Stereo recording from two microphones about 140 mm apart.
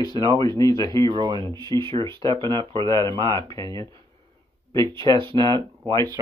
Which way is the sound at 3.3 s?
25° left (ahead or behind).